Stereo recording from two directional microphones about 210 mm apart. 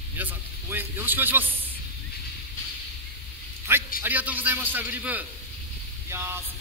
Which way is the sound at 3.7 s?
10° right (ahead or behind).